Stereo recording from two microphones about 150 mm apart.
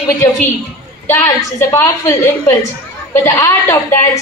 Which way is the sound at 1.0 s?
15° left (ahead or behind).